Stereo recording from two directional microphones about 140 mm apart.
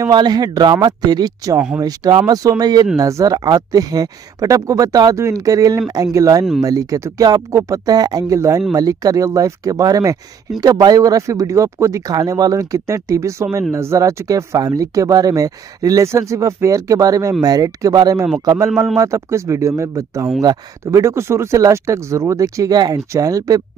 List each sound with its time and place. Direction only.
0.0 s speech: 30° right (ahead or behind)